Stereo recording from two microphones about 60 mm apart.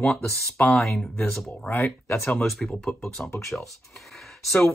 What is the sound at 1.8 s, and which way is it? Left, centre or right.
Speech, left.